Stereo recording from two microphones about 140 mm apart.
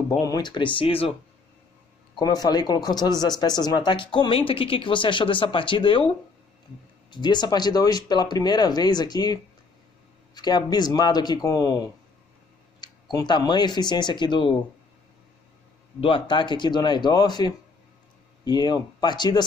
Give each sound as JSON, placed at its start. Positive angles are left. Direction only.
{"t": 0.2, "sound": "speech", "side_deg": 30}
{"t": 2.1, "sound": "speech", "side_deg": 25}
{"t": 16.0, "sound": "speech", "side_deg": 35}